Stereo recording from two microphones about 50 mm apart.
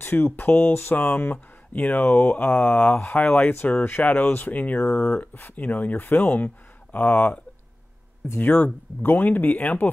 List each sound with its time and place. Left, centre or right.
0.0 s speech: left
4.8 s speech: left
5.2 s speech: left
8.4 s speech: left